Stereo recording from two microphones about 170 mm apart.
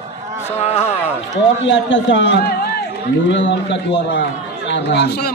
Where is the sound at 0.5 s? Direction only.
40° left (ahead or behind).